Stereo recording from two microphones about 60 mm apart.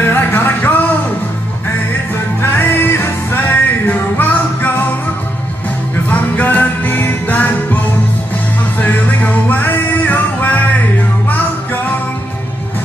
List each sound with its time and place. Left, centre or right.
0.0 s a sound: left
2.8 s music: left
6.0 s music: left
8.8 s music: left